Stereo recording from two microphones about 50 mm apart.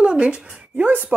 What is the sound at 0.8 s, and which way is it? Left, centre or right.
Speech, right.